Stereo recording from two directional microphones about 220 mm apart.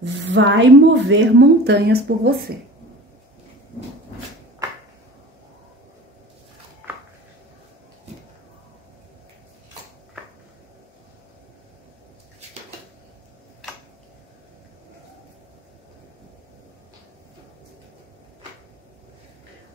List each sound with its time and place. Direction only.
0.0 s a woman's voice: 55° right (ahead or behind)